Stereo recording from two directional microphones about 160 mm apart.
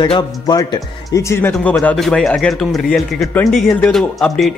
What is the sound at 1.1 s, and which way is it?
Speech, 15° left (ahead or behind).